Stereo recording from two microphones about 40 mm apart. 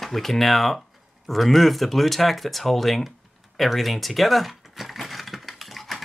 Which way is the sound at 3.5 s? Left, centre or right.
Centre.